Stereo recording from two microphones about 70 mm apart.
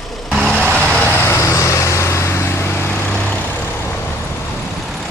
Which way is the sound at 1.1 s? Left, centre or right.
Left.